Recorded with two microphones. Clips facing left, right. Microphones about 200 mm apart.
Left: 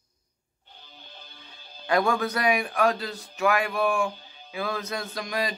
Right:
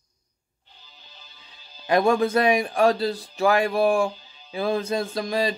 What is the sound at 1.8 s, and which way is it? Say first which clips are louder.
Speech: right 4 dB; 25° right (ahead or behind).